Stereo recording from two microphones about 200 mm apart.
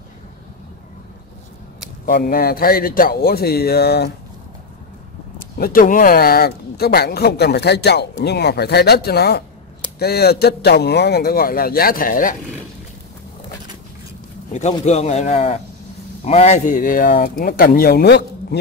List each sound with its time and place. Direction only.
2.0 s speech: 45° left (ahead or behind)
5.6 s speech: 45° left (ahead or behind)
14.9 s speech: 35° left (ahead or behind); by 18.6 s 55° left (ahead or behind)